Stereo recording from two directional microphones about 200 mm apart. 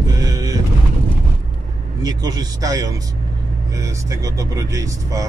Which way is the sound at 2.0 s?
20° right (ahead or behind).